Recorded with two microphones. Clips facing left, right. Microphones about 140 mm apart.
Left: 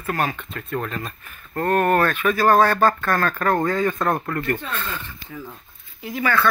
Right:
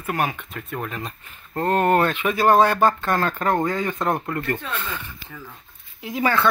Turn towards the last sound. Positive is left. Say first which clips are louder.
# right 1 dB
turn(degrees=-25)  # may be behind; listen again after turning